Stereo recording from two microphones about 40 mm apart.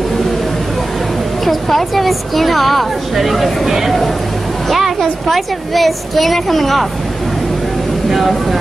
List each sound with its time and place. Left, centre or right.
1.4 s a woman's voice: centre
8.1 s a woman's voice: centre